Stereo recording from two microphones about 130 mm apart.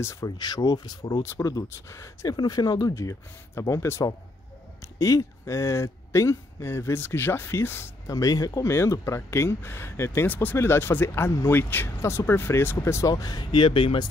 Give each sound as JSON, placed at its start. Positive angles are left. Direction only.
{"t": 0.0, "sound": "speech", "side_deg": 25}
{"t": 13.1, "sound": "speech", "side_deg": 30}